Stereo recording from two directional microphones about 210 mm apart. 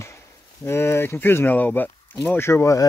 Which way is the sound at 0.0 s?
15° left (ahead or behind).